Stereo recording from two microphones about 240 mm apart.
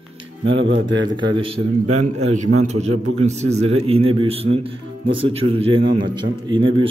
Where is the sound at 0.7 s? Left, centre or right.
Right.